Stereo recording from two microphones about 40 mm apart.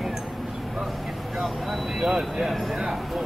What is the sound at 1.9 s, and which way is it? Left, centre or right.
Speech, centre.